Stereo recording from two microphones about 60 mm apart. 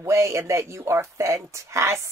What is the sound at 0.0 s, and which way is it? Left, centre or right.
Speech, right.